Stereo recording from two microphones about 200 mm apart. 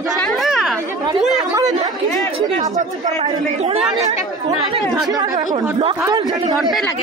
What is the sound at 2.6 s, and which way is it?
Speech, 35° right (ahead or behind).